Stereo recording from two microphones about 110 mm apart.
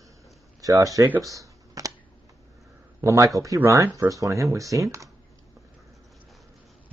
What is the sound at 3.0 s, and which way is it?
A man's voice, 30° right (ahead or behind).